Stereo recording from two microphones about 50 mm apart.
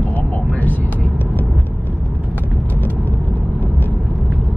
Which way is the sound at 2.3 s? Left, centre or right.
Left.